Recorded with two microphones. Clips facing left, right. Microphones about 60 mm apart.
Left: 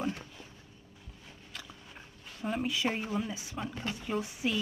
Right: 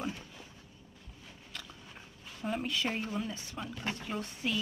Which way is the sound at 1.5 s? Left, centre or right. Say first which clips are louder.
Even; centre.